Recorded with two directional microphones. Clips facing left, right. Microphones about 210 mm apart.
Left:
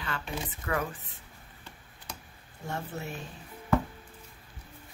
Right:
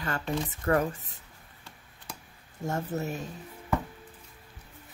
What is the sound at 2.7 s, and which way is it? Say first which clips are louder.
Speech: right 5 dB; 40° right (ahead or behind).